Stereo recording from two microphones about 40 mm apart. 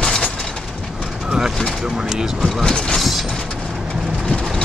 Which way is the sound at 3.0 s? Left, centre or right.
Centre.